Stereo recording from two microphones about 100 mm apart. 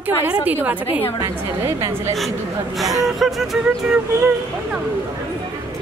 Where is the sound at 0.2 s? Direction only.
20° right (ahead or behind).